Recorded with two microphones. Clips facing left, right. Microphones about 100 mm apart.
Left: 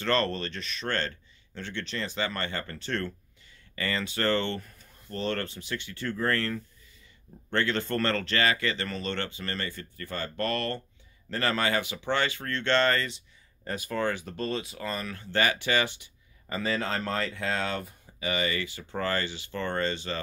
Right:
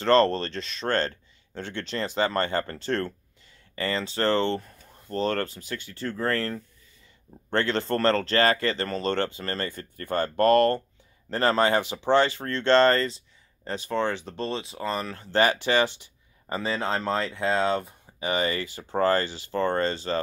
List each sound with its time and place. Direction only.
0.0 s speech: 30° right (ahead or behind)
3.7 s speech: 30° right (ahead or behind)
5.0 s speech: 40° right (ahead or behind)
11.2 s speech: 35° right (ahead or behind)
13.7 s speech: 25° right (ahead or behind)